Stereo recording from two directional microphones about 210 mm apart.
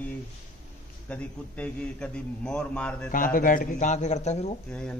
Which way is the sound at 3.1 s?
40° left (ahead or behind).